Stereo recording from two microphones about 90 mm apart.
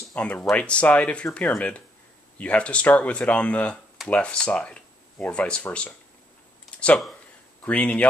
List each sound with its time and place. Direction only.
0.1 s speech: 10° left (ahead or behind)
7.6 s speech: 15° left (ahead or behind)